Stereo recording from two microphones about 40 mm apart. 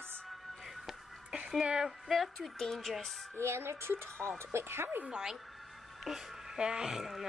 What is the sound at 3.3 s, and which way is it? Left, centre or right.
Speech, right.